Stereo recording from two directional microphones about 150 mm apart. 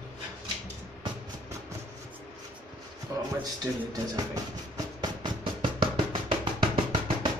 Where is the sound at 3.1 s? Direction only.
20° right (ahead or behind).